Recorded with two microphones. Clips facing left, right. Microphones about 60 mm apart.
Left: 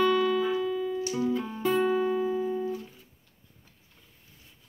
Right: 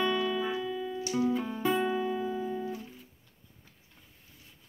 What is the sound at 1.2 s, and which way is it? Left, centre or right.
Music, centre.